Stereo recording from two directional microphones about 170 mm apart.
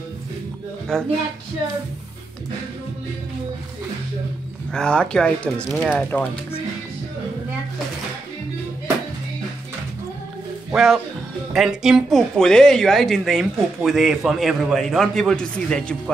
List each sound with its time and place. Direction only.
0.9 s speech: 5° left (ahead or behind)
4.7 s speech: 5° left (ahead or behind)
10.7 s speech: centre (ahead or behind)